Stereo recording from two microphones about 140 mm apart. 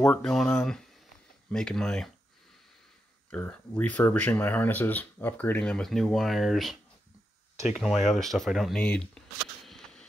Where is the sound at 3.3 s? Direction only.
10° left (ahead or behind).